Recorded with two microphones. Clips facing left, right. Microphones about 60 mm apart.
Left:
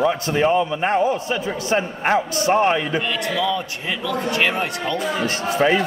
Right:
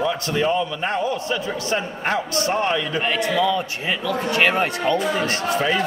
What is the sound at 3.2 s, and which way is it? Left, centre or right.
A man's voice, right.